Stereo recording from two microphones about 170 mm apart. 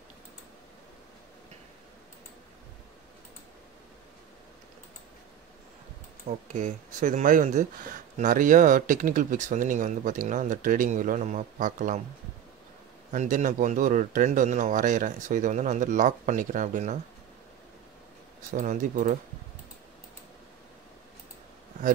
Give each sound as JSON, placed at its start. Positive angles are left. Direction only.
{"t": 6.2, "sound": "speech", "side_deg": -45}
{"t": 13.1, "sound": "speech", "side_deg": -45}
{"t": 18.5, "sound": "speech", "side_deg": -50}